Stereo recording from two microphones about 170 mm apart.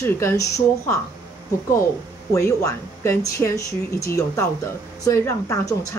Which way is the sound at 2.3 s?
15° left (ahead or behind).